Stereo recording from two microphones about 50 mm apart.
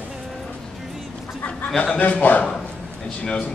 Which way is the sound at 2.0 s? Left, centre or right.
Left.